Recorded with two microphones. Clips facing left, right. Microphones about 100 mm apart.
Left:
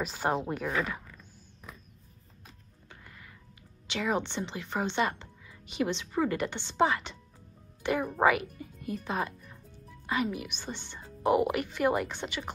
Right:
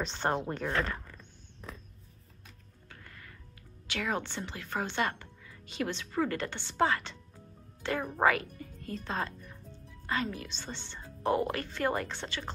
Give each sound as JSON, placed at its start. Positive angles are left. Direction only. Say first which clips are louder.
{"t": 0.0, "sound": "a sound", "louder": "left 1 dB", "side_deg": 5}
{"t": 2.9, "sound": "music", "louder": "even", "side_deg": 15}
{"t": 3.8, "sound": "speech", "louder": "left 3 dB", "side_deg": 20}